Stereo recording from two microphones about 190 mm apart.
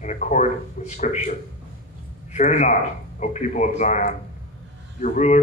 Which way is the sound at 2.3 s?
40° left (ahead or behind).